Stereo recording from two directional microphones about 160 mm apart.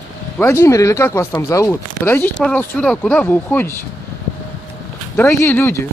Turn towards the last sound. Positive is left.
turn(degrees=15)  # may be behind; listen again after turning